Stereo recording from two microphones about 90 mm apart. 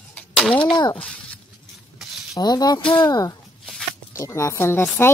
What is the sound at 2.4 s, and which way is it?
Speech, 45° left (ahead or behind).